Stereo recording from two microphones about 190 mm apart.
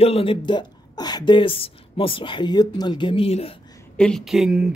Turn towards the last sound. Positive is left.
turn(degrees=-5)  # may be behind; listen again after turning